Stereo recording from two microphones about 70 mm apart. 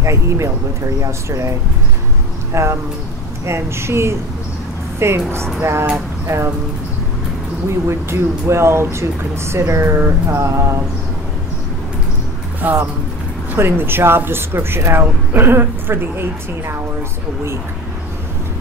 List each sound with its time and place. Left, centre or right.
0.0 s mantra: right
2.5 s speech: right
7.9 s speech: right
9.8 s mantra: right
12.6 s speech: right